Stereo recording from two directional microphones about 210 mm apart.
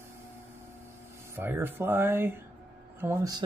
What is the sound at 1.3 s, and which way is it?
Speech, 10° right (ahead or behind).